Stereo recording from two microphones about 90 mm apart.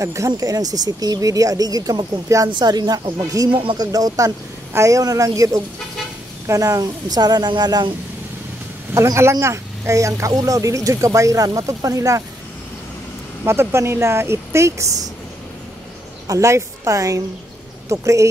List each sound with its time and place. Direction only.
0.0 s speech: 35° right (ahead or behind)
2.5 s speech: 50° right (ahead or behind)
8.9 s speech: 35° right (ahead or behind)
13.4 s speech: 30° right (ahead or behind)
16.3 s a woman's voice: 35° right (ahead or behind)